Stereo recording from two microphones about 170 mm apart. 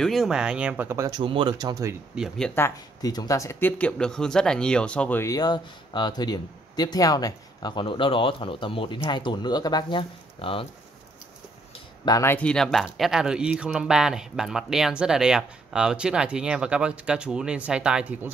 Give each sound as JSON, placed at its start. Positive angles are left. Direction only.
{"t": 0.0, "sound": "speech", "side_deg": 0}
{"t": 2.1, "sound": "speech", "side_deg": 0}
{"t": 5.2, "sound": "speech", "side_deg": 20}
{"t": 12.0, "sound": "speech", "side_deg": 20}